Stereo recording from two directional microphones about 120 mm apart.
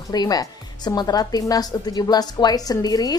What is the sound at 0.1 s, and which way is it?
A woman's voice, 35° left (ahead or behind).